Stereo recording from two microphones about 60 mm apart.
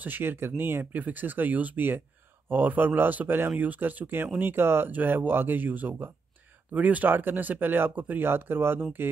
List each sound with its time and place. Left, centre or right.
0.0 s speech: right